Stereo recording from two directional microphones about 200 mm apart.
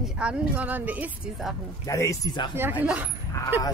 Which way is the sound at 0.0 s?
5° right (ahead or behind).